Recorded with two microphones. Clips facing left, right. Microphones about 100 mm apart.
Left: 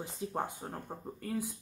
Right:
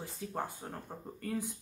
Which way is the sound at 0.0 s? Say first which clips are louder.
Left 2 dB; 20° left (ahead or behind).